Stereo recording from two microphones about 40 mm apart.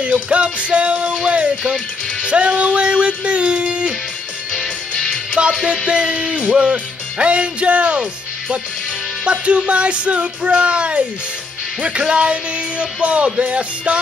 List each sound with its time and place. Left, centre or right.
0.0 s speech: right
2.2 s music: right
4.5 s music: centre
5.4 s speech: right
5.9 s music: centre; by 8.0 s right
9.2 s speech: right